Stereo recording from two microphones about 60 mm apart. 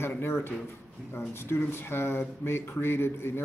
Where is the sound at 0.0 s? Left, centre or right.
Left.